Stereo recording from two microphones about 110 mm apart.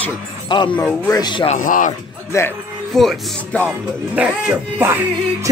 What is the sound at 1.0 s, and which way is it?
Speech, 30° left (ahead or behind).